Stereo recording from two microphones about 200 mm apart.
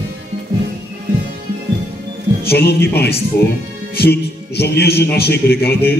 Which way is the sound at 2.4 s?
55° left (ahead or behind).